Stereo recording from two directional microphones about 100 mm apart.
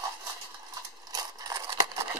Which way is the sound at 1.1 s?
35° right (ahead or behind).